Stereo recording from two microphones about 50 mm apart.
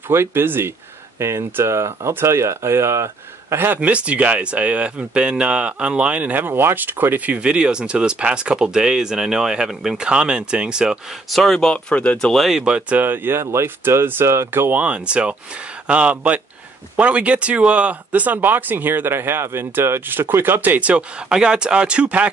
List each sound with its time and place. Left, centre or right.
0.1 s speech: right
1.2 s speech: right
3.5 s speech: right
3.8 s speech: right
6.4 s speech: right; by 9.9 s centre
9.9 s speech: centre
11.2 s speech: centre
11.7 s speech: left
12.5 s speech: centre
12.9 s speech: right
14.5 s speech: right
14.8 s speech: right